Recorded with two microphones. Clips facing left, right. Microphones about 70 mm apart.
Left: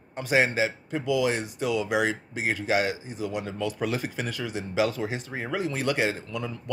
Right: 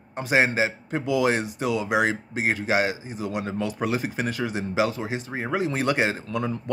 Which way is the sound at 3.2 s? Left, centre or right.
Right.